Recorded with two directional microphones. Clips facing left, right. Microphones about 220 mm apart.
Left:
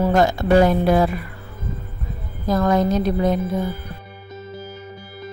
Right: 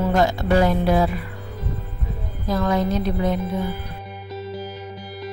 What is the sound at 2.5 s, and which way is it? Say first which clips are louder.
Speech: left 3 dB; 45° left (ahead or behind).